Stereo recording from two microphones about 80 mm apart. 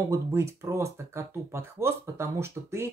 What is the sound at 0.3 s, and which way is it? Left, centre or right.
Speech, right.